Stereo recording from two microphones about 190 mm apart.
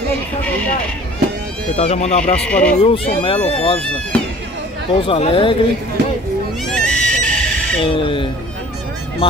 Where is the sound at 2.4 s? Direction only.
5° left (ahead or behind).